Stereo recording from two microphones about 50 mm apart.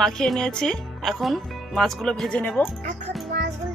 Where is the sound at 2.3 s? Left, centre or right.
Left.